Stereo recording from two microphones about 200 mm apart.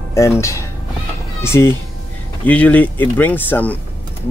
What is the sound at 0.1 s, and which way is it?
Speech, 15° left (ahead or behind).